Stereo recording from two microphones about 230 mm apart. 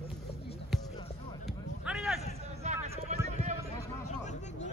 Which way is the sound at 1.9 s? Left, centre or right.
Centre.